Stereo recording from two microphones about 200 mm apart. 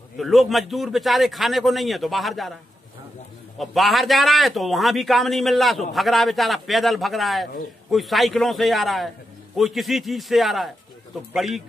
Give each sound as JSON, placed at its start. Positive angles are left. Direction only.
{"t": 0.2, "sound": "a man's voice", "side_deg": 0}
{"t": 3.5, "sound": "a man's voice", "side_deg": 0}